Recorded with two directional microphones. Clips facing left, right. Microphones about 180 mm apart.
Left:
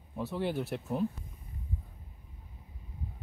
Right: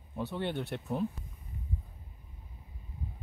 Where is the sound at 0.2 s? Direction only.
Centre (ahead or behind).